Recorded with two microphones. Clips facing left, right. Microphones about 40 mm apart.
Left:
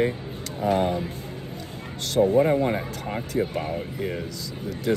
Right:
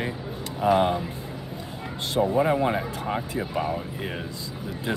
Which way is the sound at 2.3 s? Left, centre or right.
Right.